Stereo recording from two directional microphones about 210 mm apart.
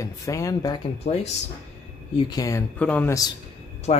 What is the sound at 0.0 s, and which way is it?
Speech, 15° left (ahead or behind).